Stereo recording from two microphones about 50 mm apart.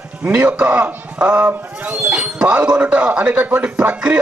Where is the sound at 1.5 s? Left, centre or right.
Right.